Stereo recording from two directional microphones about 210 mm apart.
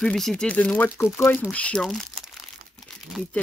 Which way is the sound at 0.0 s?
Centre (ahead or behind).